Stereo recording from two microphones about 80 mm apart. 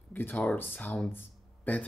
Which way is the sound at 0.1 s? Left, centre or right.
Left.